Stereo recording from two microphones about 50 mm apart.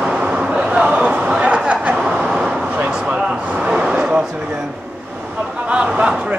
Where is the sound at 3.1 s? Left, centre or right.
Right.